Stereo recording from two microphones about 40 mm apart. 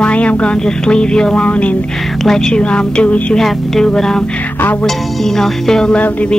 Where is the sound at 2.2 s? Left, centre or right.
Centre.